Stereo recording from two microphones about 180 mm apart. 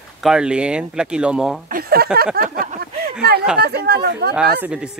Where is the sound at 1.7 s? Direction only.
55° right (ahead or behind).